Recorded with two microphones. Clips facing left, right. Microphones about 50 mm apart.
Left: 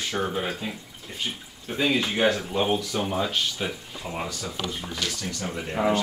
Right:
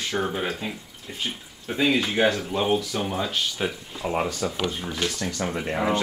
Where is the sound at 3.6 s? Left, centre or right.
Centre.